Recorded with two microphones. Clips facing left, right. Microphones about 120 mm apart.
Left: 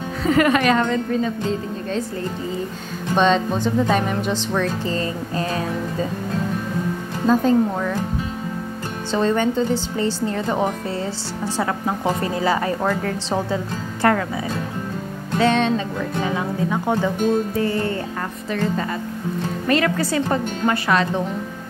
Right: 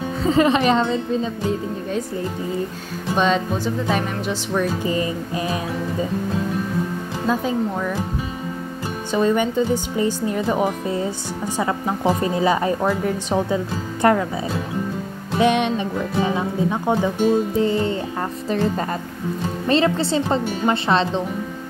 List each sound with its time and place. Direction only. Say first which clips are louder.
0.3 s a woman's voice: even; 25° right (ahead or behind)
0.8 s speech: left 1 dB; 15° right (ahead or behind)
3.2 s speech: left 2 dB; 5° right (ahead or behind)
7.2 s speech: left 5 dB; 5° right (ahead or behind)
9.1 s a woman's voice: even; 10° right (ahead or behind)
15.3 s music: even; 15° right (ahead or behind)
16.2 s a woman's voice: right 2 dB; 20° right (ahead or behind)
19.7 s a woman's voice: right 1 dB; 25° right (ahead or behind)